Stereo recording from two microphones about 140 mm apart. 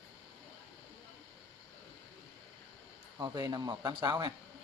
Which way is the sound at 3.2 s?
30° right (ahead or behind).